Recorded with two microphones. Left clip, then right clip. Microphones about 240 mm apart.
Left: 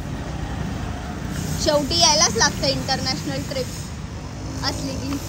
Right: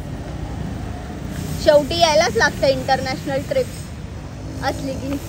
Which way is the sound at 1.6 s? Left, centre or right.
Centre.